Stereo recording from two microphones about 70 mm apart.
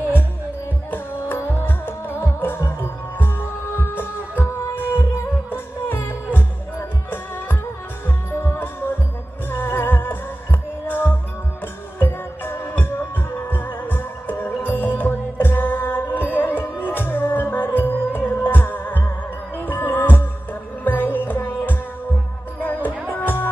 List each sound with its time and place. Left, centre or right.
0.8 s music: left